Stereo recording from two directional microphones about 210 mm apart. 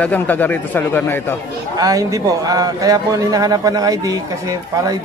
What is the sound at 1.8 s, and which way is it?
A man's voice, 15° right (ahead or behind).